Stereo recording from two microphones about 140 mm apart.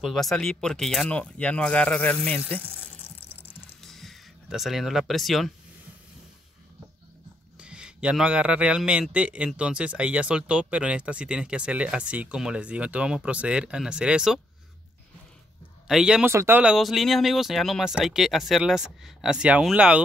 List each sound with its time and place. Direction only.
0.0 s speech: centre (ahead or behind)
3.4 s a sound: centre (ahead or behind)
7.5 s a man's voice: 5° right (ahead or behind)
15.9 s speech: 5° right (ahead or behind)
16.3 s a man's voice: 15° right (ahead or behind)
16.7 s speech: centre (ahead or behind)